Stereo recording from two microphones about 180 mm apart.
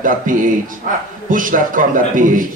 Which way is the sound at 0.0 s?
50° right (ahead or behind).